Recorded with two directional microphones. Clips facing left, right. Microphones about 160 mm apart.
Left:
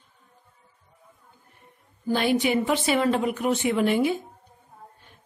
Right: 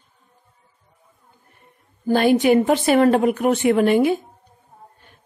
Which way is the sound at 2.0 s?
45° right (ahead or behind).